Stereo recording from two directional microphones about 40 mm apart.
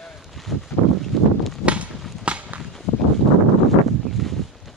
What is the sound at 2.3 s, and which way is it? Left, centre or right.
Walk, right.